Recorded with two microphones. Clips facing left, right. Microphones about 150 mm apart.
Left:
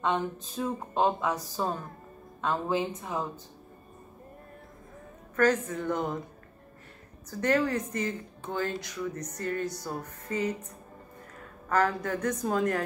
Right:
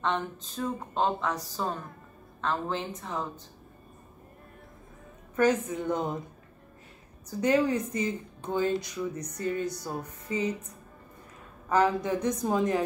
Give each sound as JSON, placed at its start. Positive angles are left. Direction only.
{"t": 0.0, "sound": "a woman's voice", "side_deg": 10}
{"t": 5.3, "sound": "a woman's voice", "side_deg": -15}
{"t": 7.2, "sound": "a woman's voice", "side_deg": -15}
{"t": 11.7, "sound": "a woman's voice", "side_deg": -15}